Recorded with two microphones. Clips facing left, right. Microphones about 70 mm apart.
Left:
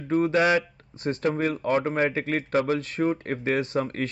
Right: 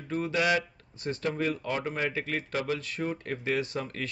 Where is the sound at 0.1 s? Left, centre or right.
Left.